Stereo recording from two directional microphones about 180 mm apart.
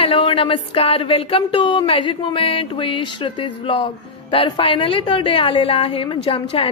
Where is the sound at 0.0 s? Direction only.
30° left (ahead or behind).